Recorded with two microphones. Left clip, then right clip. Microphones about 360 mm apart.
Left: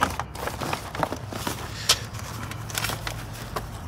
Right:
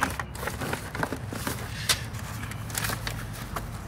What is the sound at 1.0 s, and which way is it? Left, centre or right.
Walk, centre.